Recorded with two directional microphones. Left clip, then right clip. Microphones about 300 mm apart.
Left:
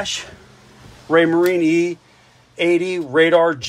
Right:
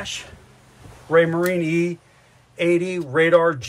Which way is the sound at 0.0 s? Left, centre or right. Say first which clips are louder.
Left 6 dB; centre.